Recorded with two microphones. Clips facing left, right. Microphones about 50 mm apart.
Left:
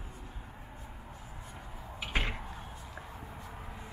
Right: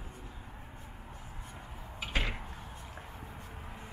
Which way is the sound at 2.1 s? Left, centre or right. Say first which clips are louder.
Left 1 dB; left.